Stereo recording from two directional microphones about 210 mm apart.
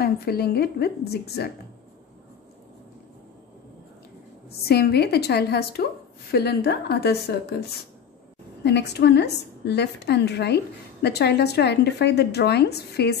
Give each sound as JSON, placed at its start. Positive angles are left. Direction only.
{"t": 0.0, "sound": "a woman's voice", "side_deg": 50}
{"t": 4.5, "sound": "a woman's voice", "side_deg": 50}
{"t": 8.6, "sound": "a woman's voice", "side_deg": 55}